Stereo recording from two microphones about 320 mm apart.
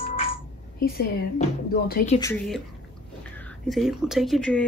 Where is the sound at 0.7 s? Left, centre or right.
Left.